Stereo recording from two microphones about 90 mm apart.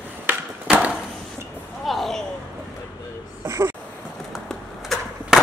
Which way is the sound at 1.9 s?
Centre (ahead or behind).